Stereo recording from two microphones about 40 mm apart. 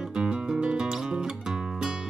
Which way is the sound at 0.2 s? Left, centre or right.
Centre.